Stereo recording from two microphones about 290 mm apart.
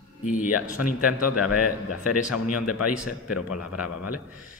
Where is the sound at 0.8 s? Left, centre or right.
Left.